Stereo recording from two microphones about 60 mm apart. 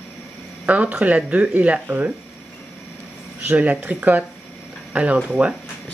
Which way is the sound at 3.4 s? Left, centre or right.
Right.